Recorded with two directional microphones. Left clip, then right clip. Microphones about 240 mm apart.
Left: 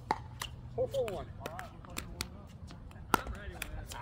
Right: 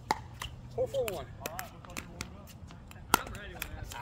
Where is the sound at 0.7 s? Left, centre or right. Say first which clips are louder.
Right 2 dB; right.